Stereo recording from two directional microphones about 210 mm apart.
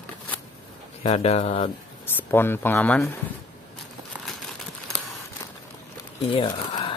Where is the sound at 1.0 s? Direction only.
30° left (ahead or behind).